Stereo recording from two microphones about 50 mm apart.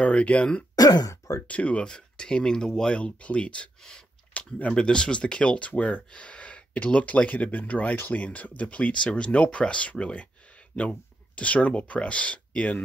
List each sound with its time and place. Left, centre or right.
0.0 s speech: left
1.5 s speech: left
3.0 s speech: left